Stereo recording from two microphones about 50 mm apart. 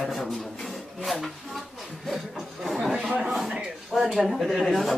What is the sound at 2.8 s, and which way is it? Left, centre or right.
Speech, centre.